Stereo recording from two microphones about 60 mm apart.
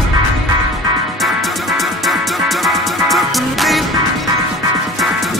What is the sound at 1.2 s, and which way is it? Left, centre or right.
Music, centre.